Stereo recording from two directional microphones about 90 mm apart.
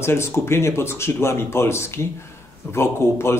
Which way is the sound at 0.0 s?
30° left (ahead or behind).